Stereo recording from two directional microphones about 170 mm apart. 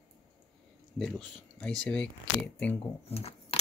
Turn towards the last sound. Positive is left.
turn(degrees=35)  # may be behind; listen again after turning